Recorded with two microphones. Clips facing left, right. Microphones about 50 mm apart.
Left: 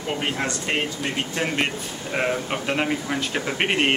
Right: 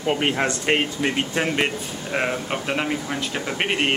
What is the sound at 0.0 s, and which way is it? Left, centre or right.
Speech, right.